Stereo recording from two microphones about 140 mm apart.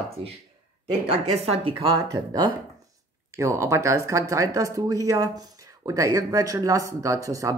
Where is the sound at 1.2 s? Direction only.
50° right (ahead or behind).